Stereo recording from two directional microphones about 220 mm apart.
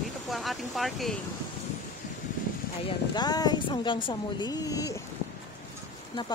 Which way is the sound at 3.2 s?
20° left (ahead or behind).